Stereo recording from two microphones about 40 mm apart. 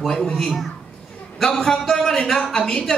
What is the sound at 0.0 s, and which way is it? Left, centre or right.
A man's voice, centre.